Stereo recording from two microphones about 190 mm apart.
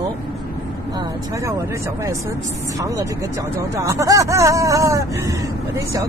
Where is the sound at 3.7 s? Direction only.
15° right (ahead or behind).